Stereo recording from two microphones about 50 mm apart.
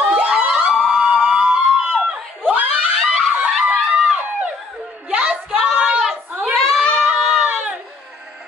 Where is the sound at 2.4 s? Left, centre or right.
Right.